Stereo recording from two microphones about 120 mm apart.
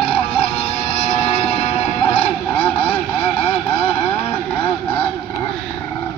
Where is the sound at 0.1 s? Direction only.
55° left (ahead or behind).